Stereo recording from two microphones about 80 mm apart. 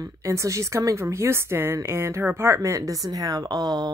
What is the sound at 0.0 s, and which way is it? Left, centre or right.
Speech, right.